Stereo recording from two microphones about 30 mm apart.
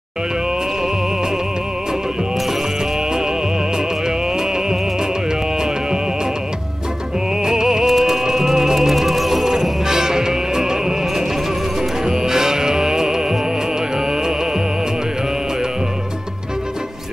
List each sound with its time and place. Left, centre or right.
7.4 s music: right
7.8 s music: centre
9.8 s music: right